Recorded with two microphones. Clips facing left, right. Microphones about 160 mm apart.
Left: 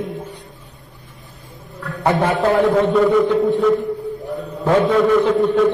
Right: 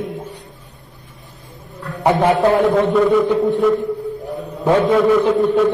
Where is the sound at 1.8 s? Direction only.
15° right (ahead or behind).